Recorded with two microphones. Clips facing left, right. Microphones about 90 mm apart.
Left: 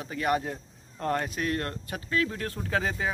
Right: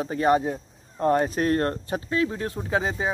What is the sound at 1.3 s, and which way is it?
Speech, 40° right (ahead or behind).